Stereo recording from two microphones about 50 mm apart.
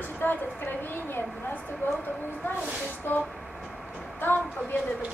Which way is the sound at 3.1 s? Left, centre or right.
Left.